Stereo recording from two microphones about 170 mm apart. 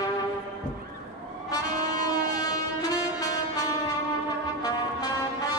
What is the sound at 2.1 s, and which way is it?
Music, 20° left (ahead or behind).